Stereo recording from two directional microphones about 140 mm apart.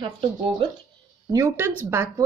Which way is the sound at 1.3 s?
20° right (ahead or behind).